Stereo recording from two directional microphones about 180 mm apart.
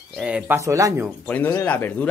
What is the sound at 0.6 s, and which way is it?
Speech, 15° right (ahead or behind).